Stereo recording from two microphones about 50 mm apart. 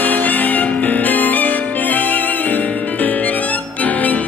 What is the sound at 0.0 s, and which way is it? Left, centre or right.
Music, left.